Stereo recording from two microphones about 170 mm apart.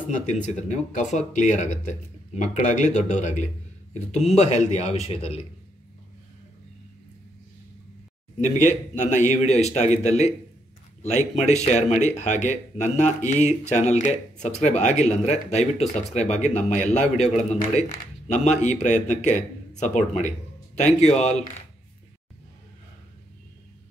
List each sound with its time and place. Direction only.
0.1 s speech: 45° left (ahead or behind)
8.4 s speech: 45° left (ahead or behind)